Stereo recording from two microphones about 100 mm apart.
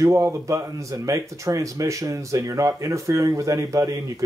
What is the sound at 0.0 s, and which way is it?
Speech, 30° right (ahead or behind).